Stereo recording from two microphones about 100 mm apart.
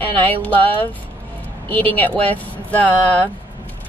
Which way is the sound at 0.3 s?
15° left (ahead or behind).